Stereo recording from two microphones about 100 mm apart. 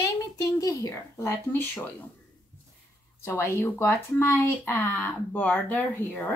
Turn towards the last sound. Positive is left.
turn(degrees=15)  # may be behind; listen again after turning